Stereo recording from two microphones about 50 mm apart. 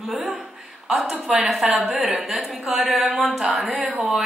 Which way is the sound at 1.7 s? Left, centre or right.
Centre.